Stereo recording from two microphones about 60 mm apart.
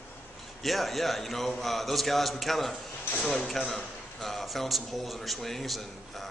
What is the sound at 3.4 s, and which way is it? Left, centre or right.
A man's voice, centre.